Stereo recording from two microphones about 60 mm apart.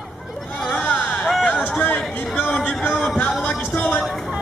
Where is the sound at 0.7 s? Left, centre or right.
Left.